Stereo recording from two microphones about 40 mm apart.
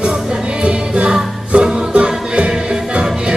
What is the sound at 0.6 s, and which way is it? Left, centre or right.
Music, right.